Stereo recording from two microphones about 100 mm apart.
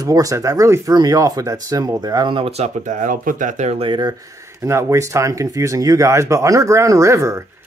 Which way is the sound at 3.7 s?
65° right (ahead or behind).